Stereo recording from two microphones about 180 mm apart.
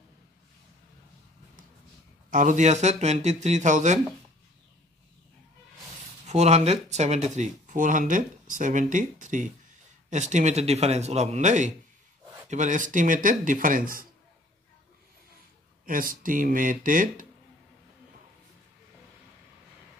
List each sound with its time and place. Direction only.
2.3 s speech: 45° right (ahead or behind)
6.2 s speech: 40° right (ahead or behind)
15.8 s speech: 50° right (ahead or behind)